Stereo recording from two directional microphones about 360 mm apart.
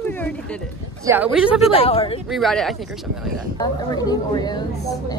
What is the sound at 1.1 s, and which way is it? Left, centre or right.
Speech, centre.